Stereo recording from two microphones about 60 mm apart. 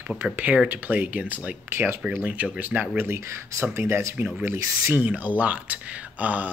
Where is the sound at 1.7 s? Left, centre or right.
Right.